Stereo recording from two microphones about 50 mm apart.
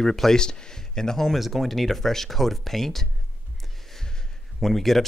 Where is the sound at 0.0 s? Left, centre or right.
Centre.